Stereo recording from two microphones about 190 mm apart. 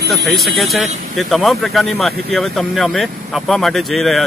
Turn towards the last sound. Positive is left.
turn(degrees=0)  # may be behind; listen again after turning